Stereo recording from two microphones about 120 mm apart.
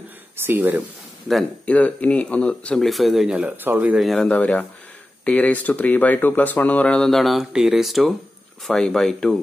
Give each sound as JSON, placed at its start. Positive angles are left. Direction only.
{"t": 0.5, "sound": "speech", "side_deg": -15}
{"t": 1.3, "sound": "speech", "side_deg": 10}
{"t": 4.0, "sound": "speech", "side_deg": 5}